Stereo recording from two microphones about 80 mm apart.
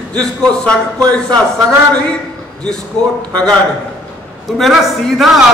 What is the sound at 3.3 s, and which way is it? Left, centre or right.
Speech, centre.